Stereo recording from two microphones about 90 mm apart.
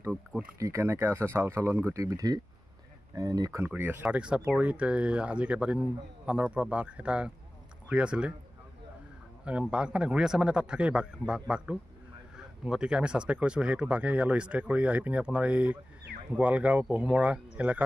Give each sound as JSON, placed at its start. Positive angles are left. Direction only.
{"t": 0.6, "sound": "speech", "side_deg": -35}
{"t": 3.5, "sound": "speech", "side_deg": -20}
{"t": 9.4, "sound": "speech", "side_deg": -15}